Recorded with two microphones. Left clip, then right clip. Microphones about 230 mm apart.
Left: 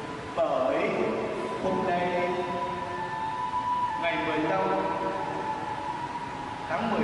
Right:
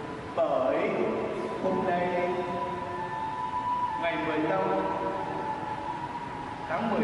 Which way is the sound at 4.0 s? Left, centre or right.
Centre.